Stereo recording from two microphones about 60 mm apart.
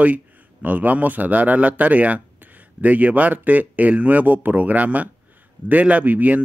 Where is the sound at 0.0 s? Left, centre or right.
Right.